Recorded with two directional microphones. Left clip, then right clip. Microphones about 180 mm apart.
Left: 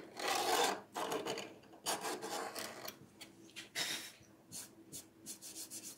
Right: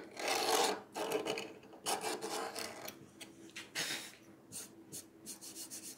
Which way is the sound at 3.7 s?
10° right (ahead or behind).